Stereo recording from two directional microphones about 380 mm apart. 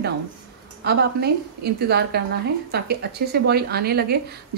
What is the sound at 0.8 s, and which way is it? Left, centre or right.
A woman's voice, right.